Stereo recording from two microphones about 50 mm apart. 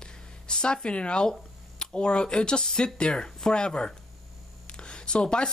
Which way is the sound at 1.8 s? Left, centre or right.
Centre.